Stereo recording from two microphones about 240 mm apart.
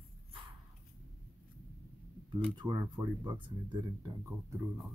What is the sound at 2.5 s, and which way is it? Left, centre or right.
Speech, centre.